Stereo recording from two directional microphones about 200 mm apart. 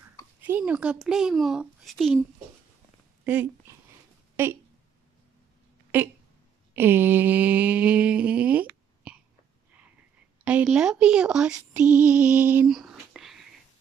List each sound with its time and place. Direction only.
0.4 s speech: 10° right (ahead or behind)
5.9 s speech: 10° right (ahead or behind)
6.7 s mantra: 10° right (ahead or behind)
10.4 s speech: 5° right (ahead or behind)